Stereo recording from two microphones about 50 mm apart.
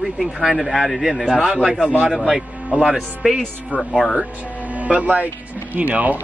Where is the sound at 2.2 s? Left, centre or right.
Centre.